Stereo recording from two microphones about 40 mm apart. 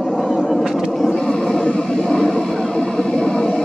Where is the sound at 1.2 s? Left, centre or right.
Centre.